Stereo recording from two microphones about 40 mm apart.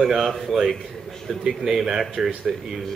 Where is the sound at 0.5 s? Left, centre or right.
Centre.